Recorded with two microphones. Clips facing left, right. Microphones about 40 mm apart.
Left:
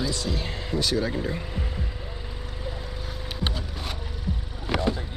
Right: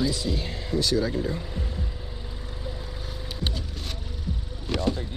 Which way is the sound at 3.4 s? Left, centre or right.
Centre.